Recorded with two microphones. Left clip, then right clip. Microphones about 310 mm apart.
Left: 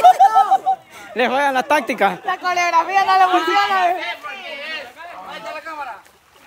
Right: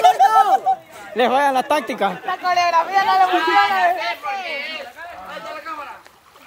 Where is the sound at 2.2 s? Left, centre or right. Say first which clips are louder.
Right 1 dB; left.